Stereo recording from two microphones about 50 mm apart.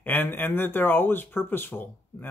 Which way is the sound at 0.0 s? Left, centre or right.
Left.